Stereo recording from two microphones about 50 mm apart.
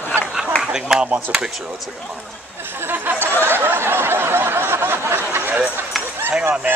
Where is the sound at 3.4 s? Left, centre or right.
Right.